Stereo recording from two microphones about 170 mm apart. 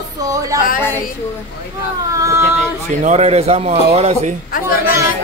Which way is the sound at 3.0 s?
40° right (ahead or behind).